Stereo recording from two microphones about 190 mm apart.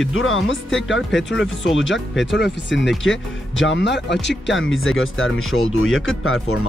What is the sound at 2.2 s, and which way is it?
Speech, 65° left (ahead or behind).